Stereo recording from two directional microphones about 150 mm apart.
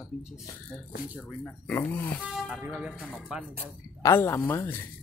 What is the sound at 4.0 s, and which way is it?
Speech, 15° left (ahead or behind).